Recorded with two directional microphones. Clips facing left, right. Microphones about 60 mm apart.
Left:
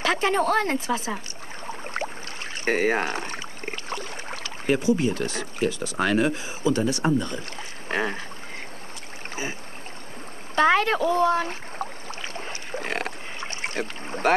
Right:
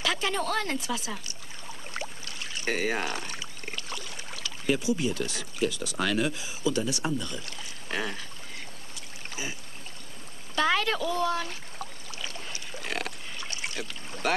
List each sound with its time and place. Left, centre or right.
0.0 s speech: left
2.0 s boat: left
2.5 s speech: left
9.3 s a sound: left
10.5 s boat: left